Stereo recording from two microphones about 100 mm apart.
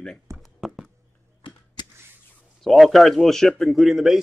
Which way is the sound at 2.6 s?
Centre (ahead or behind).